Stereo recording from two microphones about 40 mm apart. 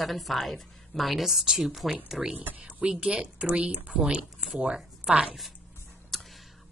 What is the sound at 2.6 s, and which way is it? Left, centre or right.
Speech, right.